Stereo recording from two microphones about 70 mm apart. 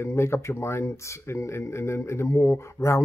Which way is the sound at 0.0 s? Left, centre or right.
Left.